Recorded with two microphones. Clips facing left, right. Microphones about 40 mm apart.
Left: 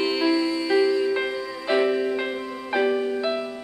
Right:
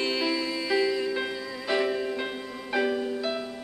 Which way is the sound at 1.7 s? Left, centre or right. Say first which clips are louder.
Left 5 dB; centre.